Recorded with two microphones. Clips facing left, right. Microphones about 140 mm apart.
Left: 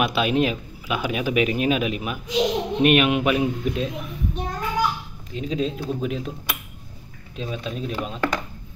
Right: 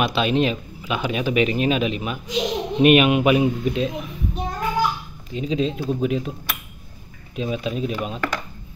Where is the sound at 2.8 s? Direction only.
5° right (ahead or behind).